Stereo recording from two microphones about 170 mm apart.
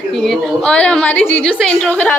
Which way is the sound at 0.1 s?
Centre (ahead or behind).